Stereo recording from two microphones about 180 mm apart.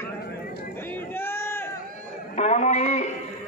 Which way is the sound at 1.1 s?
15° left (ahead or behind).